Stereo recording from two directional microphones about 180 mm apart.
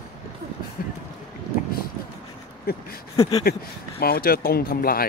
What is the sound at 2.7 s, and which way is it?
Speech, 60° left (ahead or behind).